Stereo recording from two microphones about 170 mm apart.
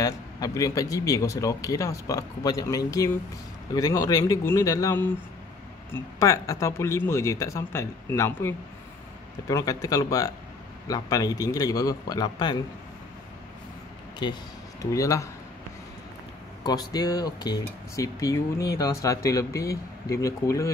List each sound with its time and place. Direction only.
0.0 s speech: 20° left (ahead or behind)
14.2 s speech: 25° left (ahead or behind)
16.6 s speech: 20° left (ahead or behind)